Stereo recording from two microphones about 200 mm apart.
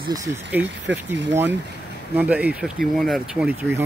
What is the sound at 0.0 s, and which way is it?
Speech, 15° right (ahead or behind).